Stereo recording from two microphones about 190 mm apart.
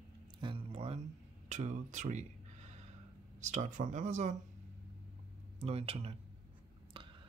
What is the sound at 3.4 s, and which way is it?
Speech, 40° right (ahead or behind).